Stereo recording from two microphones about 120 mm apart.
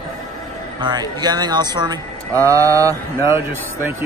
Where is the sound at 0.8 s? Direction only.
40° right (ahead or behind).